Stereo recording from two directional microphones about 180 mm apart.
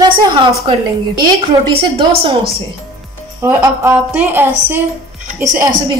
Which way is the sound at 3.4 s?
15° right (ahead or behind).